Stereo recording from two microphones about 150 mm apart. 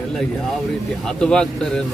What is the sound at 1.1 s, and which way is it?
Speech, 5° left (ahead or behind).